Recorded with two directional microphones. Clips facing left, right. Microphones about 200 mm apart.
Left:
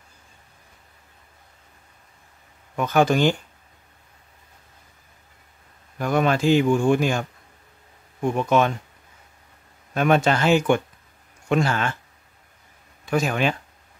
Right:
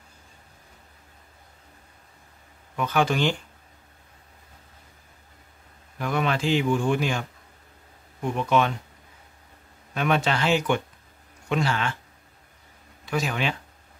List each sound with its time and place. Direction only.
2.7 s speech: 45° left (ahead or behind)
5.9 s speech: 45° left (ahead or behind)
9.9 s speech: 45° left (ahead or behind)
13.0 s speech: 50° left (ahead or behind)